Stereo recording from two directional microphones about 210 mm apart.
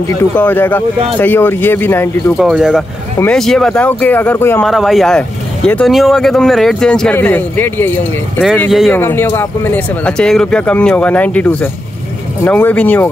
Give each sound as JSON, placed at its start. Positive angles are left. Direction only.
{"t": 0.1, "sound": "speech", "side_deg": 10}
{"t": 2.3, "sound": "speech", "side_deg": 0}
{"t": 8.9, "sound": "speech", "side_deg": 10}